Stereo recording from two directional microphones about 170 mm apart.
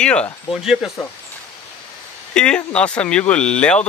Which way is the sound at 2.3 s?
5° left (ahead or behind).